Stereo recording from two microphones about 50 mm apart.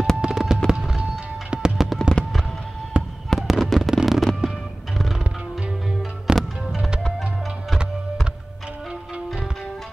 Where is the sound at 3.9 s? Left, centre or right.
Centre.